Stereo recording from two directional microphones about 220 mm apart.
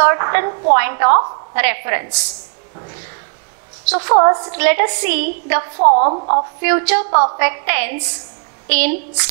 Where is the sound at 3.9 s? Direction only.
25° right (ahead or behind).